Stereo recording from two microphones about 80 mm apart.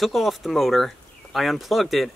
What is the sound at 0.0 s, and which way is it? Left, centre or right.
Speech, centre.